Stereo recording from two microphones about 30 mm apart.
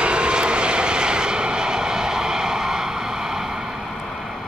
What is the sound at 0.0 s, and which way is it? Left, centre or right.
Vehicle, right.